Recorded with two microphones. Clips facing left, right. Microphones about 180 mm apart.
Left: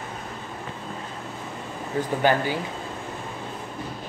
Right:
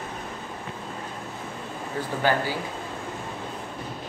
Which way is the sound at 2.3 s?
15° left (ahead or behind).